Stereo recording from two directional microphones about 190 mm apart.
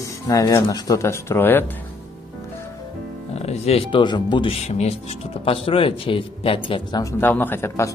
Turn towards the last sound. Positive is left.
turn(degrees=15)  # may be behind; listen again after turning